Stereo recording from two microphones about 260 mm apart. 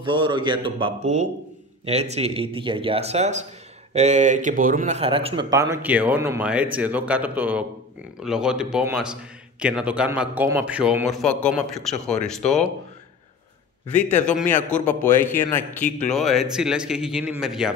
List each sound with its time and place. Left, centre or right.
0.0 s a man's voice: centre
13.9 s a man's voice: centre